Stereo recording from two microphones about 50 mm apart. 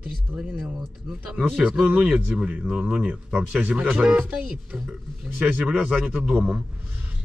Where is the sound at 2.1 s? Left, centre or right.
Centre.